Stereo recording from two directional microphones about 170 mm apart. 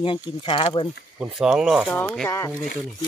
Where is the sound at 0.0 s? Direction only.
30° left (ahead or behind).